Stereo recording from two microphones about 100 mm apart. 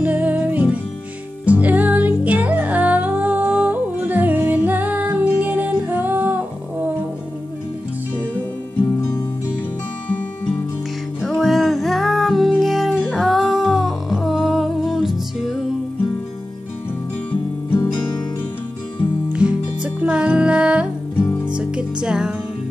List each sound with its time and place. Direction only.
0.0 s music: 15° right (ahead or behind)
11.1 s music: centre (ahead or behind)
19.3 s music: 10° right (ahead or behind)